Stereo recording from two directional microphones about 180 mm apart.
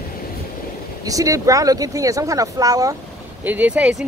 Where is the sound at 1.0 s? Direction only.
20° right (ahead or behind).